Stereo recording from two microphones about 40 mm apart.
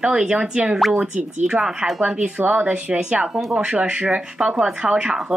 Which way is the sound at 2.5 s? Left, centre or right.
Right.